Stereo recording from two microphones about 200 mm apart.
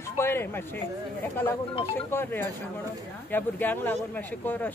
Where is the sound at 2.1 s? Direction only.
10° left (ahead or behind).